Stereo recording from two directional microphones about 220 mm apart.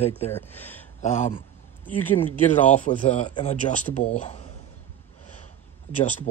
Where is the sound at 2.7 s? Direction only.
30° left (ahead or behind).